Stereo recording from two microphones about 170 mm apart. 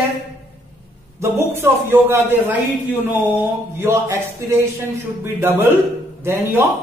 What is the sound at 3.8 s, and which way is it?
A man's voice, 15° right (ahead or behind).